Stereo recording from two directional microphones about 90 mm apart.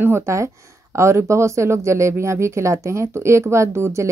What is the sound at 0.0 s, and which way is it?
Speech, 30° right (ahead or behind).